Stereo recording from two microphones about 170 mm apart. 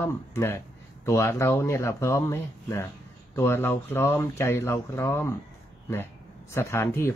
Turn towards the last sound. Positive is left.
turn(degrees=15)  # may be behind; listen again after turning